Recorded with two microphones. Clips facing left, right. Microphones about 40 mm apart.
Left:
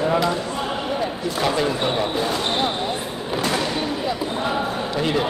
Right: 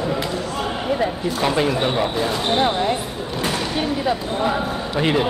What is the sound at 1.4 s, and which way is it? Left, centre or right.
Speech, centre.